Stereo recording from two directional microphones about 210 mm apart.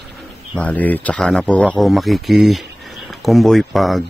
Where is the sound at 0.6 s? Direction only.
5° left (ahead or behind).